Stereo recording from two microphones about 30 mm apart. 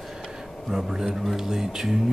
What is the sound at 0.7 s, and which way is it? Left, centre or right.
A man's voice, centre.